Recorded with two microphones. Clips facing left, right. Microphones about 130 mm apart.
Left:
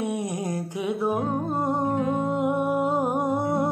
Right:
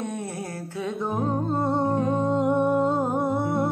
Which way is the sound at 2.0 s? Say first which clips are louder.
Right 1 dB; 35° right (ahead or behind).